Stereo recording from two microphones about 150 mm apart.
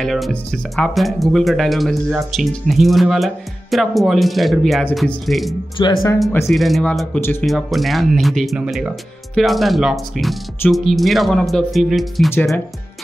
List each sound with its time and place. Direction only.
0.0 s speech: centre (ahead or behind)
5.8 s speech: 30° left (ahead or behind)
6.4 s speech: centre (ahead or behind)
7.4 s speech: centre (ahead or behind)